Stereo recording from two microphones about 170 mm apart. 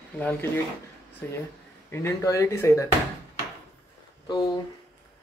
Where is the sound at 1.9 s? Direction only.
15° left (ahead or behind).